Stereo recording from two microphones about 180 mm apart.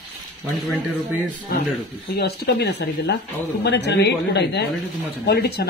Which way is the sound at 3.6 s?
75° left (ahead or behind).